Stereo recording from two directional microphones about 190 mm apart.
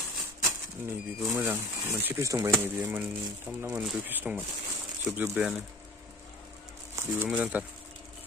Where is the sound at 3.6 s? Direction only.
5° right (ahead or behind).